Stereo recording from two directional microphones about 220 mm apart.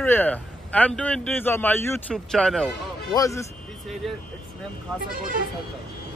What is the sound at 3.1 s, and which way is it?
Speech, 15° left (ahead or behind).